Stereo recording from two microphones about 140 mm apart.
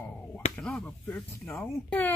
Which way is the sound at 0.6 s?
5° left (ahead or behind).